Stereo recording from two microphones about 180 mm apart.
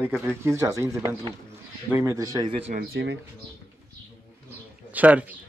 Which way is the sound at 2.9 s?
80° right.